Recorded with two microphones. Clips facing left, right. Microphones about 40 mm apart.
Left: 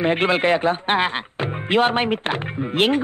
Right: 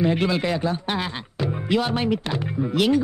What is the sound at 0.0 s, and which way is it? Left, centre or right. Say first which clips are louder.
Speech: left 3 dB; left.